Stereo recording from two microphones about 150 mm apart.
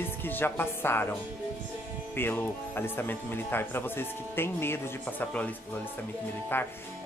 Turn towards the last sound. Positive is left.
turn(degrees=15)  # may be behind; listen again after turning